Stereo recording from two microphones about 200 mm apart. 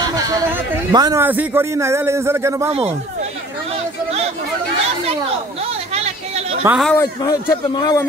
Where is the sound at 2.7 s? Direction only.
30° right (ahead or behind).